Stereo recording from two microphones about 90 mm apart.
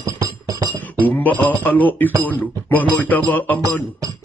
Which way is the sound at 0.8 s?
20° left (ahead or behind).